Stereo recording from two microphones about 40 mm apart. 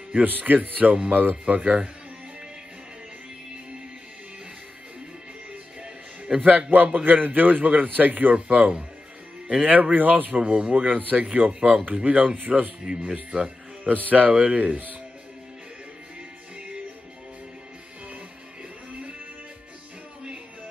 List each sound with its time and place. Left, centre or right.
0.1 s a man's voice: right
6.3 s a man's voice: centre
6.7 s a man's voice: right
12.5 s a man's voice: centre; by 13.9 s right
13.9 s a man's voice: right
14.3 s speech: right